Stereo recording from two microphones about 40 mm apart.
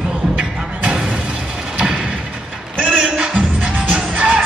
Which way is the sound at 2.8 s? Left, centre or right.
Right.